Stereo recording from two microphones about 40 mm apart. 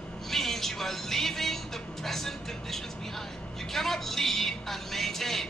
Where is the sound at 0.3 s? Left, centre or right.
Centre.